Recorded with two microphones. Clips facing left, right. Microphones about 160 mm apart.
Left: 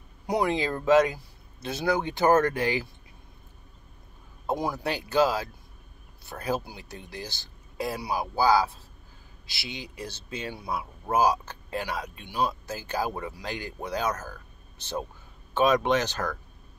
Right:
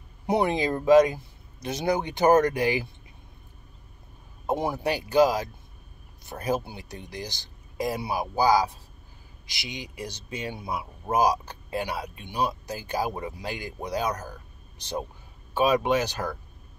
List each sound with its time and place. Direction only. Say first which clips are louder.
0.3 s speech: right 2 dB; 25° right (ahead or behind)
0.6 s speech: right 4 dB; 15° right (ahead or behind)
4.5 s speech: right 2 dB; 25° right (ahead or behind)